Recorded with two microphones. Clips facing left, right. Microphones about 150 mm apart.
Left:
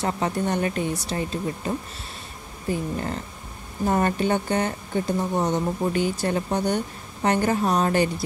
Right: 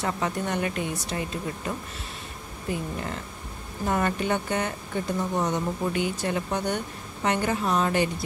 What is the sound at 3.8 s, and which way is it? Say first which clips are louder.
Speech: left 3 dB; 35° left (ahead or behind).